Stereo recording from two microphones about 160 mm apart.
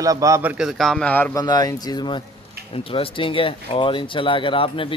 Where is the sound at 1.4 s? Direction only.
25° left (ahead or behind).